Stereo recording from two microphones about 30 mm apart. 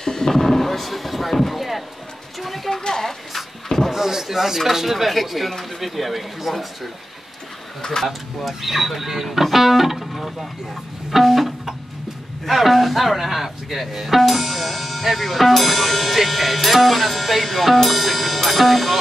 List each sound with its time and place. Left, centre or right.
0.0 s a sound: left; by 2.7 s centre
2.8 s cupboard open or close: centre
3.9 s a sound: centre
4.6 s speech: centre
7.8 s speech: left
8.5 s speech: centre
11.1 s music: centre
12.4 s speech: centre